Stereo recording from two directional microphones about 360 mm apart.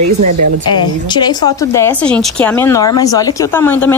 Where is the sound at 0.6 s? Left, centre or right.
Centre.